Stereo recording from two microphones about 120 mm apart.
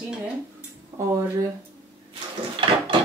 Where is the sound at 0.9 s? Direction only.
20° right (ahead or behind).